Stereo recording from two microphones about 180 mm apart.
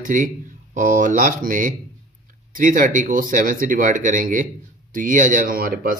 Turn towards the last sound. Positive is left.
turn(degrees=-55)  # may be behind; listen again after turning